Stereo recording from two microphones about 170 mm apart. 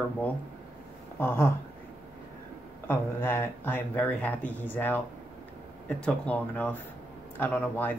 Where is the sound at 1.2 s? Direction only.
15° left (ahead or behind).